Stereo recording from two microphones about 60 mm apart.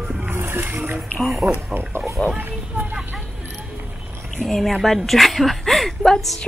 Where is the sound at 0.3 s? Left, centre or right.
Right.